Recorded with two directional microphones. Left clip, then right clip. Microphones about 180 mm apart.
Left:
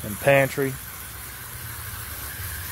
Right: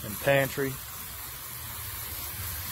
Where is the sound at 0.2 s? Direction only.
20° left (ahead or behind).